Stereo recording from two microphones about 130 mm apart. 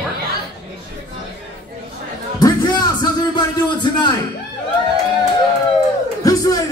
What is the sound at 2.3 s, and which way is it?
Music, 30° left (ahead or behind).